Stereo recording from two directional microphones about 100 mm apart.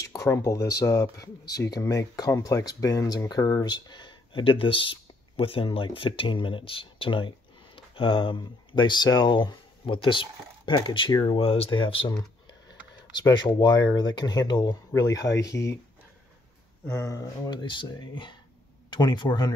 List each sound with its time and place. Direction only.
0.0 s speech: 35° left (ahead or behind); by 11.1 s 50° left (ahead or behind)
11.3 s speech: 80° left; by 12.1 s 60° left (ahead or behind)
13.3 s speech: 45° left (ahead or behind)
16.8 s speech: 30° left (ahead or behind)
17.5 s speech: 50° left (ahead or behind)